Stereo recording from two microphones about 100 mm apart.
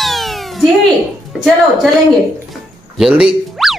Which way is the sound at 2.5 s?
5° right (ahead or behind).